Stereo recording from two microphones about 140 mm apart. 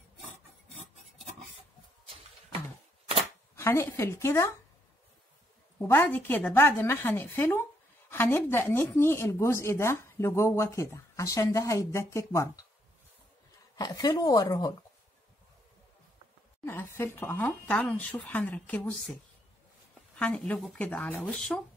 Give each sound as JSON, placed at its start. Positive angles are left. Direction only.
{"t": 3.5, "sound": "speech", "side_deg": 20}
{"t": 5.8, "sound": "speech", "side_deg": 15}
{"t": 13.7, "sound": "speech", "side_deg": 25}
{"t": 16.6, "sound": "speech", "side_deg": 20}
{"t": 20.2, "sound": "speech", "side_deg": 10}